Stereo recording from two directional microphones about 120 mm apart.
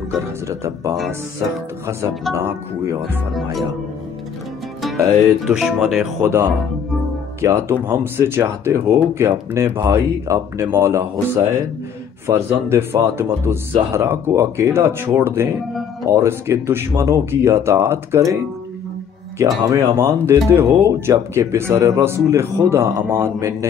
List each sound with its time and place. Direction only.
0.1 s speech: 25° right (ahead or behind)
4.8 s speech: centre (ahead or behind)
7.4 s speech: 25° right (ahead or behind)